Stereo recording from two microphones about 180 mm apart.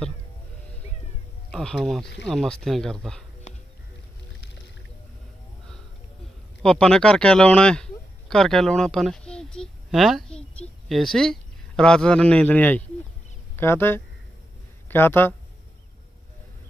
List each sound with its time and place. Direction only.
1.5 s speech: centre (ahead or behind)
3.5 s music: 40° left (ahead or behind)
6.6 s speech: 5° left (ahead or behind)